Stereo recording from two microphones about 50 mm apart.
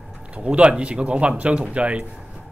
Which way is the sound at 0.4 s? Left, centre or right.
Right.